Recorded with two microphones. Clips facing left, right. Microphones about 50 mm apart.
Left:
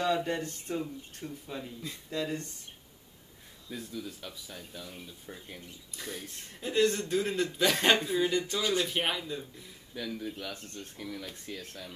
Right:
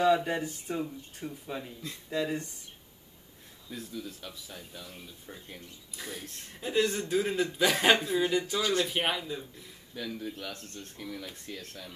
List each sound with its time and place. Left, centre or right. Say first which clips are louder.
0.0 s speech: right 4 dB; centre
3.6 s speech: even; centre